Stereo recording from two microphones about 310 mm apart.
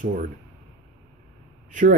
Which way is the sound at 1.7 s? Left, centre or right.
Right.